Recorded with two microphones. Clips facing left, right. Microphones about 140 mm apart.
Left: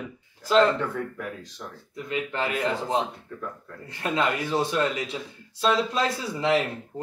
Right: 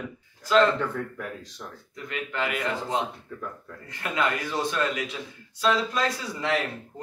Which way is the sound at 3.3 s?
Centre (ahead or behind).